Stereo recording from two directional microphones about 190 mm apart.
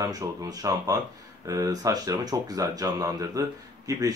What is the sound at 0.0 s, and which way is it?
Speech, 20° right (ahead or behind).